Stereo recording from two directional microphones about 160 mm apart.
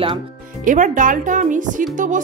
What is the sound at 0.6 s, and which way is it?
Speech, 55° right (ahead or behind).